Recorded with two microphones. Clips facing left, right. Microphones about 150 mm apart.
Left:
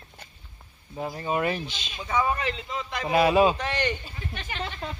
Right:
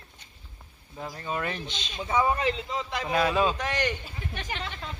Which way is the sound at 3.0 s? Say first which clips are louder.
Left 5 dB; 15° left (ahead or behind).